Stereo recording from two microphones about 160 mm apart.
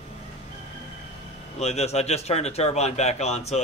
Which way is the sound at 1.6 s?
40° left (ahead or behind).